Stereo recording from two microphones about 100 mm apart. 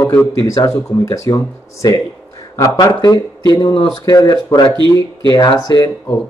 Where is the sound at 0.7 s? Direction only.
30° left (ahead or behind).